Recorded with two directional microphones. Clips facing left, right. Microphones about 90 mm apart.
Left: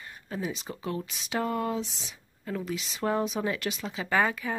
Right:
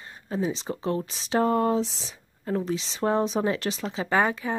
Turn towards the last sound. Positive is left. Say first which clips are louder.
# right 3 dB
turn(degrees=-25)  # may be behind; listen again after turning